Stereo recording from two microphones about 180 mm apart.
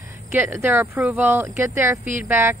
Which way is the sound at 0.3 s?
15° right (ahead or behind).